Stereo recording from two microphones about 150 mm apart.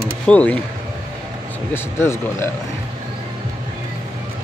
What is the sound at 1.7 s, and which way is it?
Speech, 15° left (ahead or behind).